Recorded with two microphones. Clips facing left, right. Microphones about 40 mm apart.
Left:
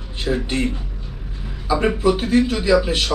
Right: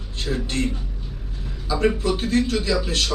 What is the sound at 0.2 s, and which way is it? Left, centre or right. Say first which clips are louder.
Speech: left 4 dB; centre.